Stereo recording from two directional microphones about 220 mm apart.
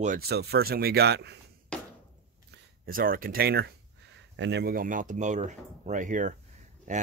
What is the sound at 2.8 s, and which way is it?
Speech, 40° right (ahead or behind).